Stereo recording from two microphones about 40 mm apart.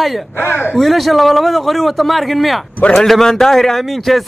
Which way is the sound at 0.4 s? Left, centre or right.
Left.